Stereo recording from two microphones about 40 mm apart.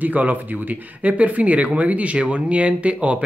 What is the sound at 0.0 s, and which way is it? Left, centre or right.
Speech, right.